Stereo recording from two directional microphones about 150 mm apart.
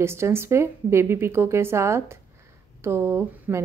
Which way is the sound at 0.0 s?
15° right (ahead or behind).